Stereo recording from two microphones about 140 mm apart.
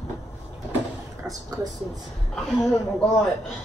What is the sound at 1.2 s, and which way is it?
Speech, 25° right (ahead or behind).